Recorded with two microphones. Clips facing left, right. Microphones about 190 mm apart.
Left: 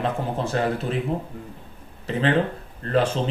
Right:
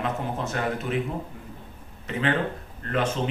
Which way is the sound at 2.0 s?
35° left (ahead or behind).